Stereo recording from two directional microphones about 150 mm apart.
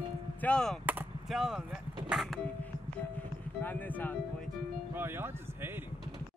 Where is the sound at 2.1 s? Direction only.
Centre (ahead or behind).